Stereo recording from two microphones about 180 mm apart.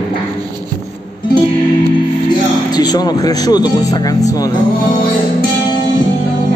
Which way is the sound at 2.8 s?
20° left (ahead or behind).